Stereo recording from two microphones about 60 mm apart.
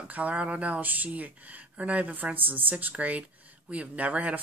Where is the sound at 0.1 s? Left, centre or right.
Right.